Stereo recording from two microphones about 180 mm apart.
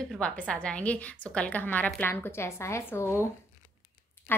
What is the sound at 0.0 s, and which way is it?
A woman's voice, 5° left (ahead or behind).